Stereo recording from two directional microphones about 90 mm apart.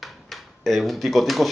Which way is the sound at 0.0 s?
Centre (ahead or behind).